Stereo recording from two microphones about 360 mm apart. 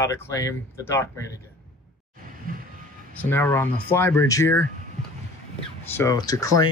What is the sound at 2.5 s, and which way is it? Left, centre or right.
Reversing beeps, right.